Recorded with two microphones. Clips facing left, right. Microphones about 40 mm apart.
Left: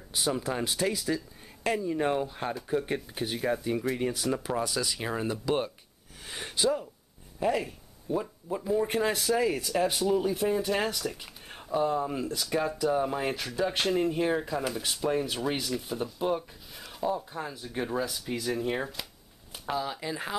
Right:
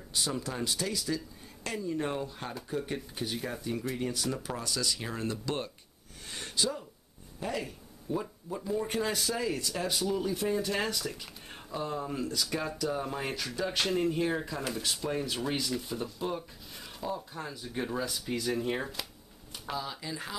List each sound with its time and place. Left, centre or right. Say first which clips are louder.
0.1 s speech: left 4 dB; centre
16.7 s a sound: left 7 dB; centre
17.1 s speech: left 4 dB; centre
19.5 s speech: left 5 dB; centre